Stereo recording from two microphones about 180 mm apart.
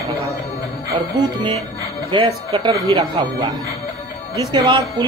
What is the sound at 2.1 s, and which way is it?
Speech, 25° right (ahead or behind).